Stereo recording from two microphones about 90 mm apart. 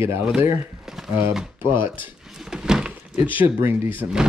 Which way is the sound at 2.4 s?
5° right (ahead or behind).